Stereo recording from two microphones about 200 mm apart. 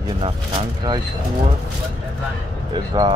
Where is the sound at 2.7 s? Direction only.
20° right (ahead or behind).